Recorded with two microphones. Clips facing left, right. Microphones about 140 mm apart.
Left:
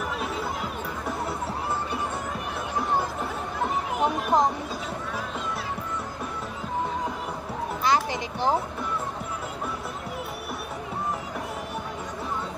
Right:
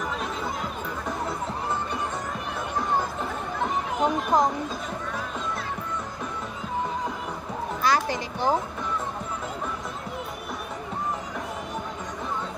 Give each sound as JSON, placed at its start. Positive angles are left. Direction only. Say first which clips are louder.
{"t": 4.0, "sound": "speech", "louder": "right 1 dB", "side_deg": 15}
{"t": 7.8, "sound": "children playing", "louder": "even", "side_deg": 20}